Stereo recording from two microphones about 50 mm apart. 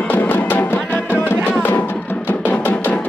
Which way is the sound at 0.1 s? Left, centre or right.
Left.